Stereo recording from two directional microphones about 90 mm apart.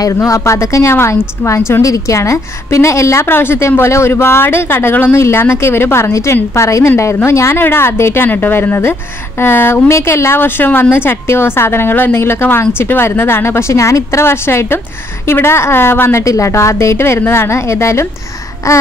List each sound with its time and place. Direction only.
0.0 s a woman's voice: 35° left (ahead or behind)